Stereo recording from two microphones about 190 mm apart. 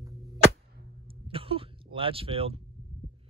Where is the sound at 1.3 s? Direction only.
30° right (ahead or behind).